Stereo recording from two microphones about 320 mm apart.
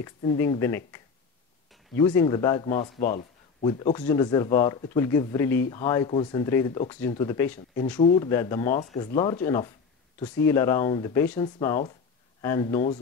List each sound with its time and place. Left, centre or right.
0.0 s speech: centre
7.5 s speech: left